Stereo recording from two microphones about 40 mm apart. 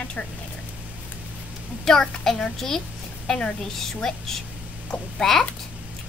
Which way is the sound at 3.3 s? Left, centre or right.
Left.